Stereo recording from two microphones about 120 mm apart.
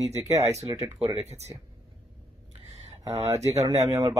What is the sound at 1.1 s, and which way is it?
Speech, 65° right (ahead or behind).